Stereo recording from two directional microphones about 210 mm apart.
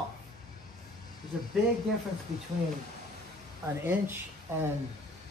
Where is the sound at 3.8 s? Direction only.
10° right (ahead or behind).